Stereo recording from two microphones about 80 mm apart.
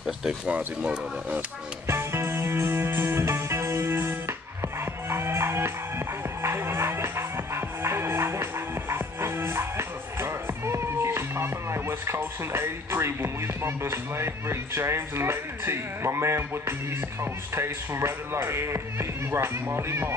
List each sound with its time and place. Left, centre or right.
0.0 s a sound: centre
0.5 s speech: centre
1.9 s music: right